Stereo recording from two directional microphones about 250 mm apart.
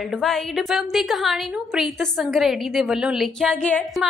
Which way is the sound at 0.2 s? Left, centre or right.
Centre.